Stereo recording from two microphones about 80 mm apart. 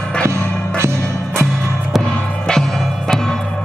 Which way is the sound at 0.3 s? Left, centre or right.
Right.